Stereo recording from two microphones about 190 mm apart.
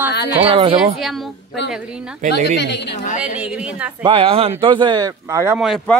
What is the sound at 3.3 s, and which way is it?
Speech, 5° right (ahead or behind).